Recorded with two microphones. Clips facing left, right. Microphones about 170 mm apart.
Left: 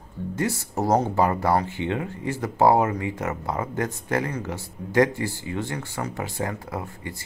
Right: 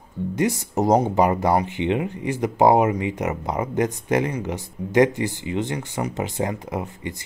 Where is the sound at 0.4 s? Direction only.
20° right (ahead or behind).